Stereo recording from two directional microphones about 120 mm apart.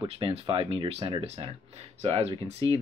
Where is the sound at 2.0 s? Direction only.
55° right (ahead or behind).